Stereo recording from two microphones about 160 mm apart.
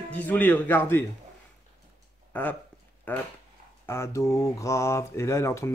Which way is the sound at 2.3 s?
10° left (ahead or behind).